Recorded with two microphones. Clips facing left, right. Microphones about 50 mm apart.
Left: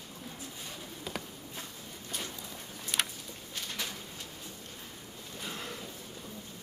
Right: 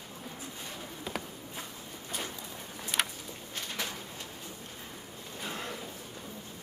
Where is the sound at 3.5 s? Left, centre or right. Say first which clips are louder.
Right 2 dB; centre.